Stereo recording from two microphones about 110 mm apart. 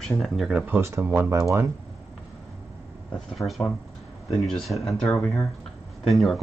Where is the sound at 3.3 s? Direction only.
Centre (ahead or behind).